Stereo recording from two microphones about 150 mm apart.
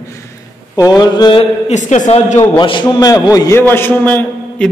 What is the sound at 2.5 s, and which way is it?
A man's voice, 30° left (ahead or behind).